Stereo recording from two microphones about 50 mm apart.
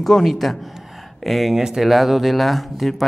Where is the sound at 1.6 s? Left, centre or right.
Centre.